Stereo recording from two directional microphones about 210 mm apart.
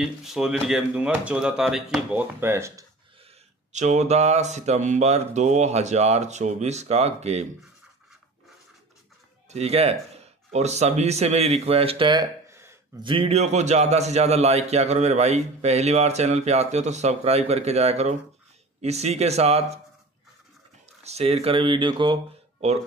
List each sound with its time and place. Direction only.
0.0 s speech: centre (ahead or behind)
3.7 s a man's voice: 35° right (ahead or behind)
9.5 s a man's voice: 30° right (ahead or behind); by 13.0 s 15° right (ahead or behind)
13.0 s a man's voice: 25° right (ahead or behind)
21.0 s speech: 30° right (ahead or behind)